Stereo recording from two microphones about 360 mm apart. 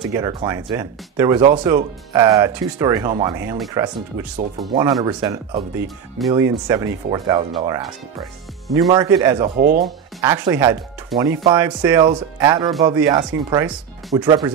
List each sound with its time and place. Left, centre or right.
0.1 s speech: centre
9.6 s speech: right
9.8 s speech: centre